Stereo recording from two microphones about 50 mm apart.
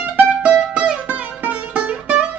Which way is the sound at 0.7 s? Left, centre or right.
Right.